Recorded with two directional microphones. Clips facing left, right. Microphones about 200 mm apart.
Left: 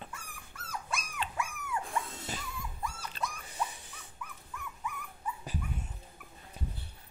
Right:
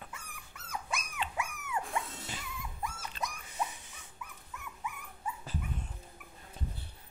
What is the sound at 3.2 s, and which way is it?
Dog, 35° left (ahead or behind).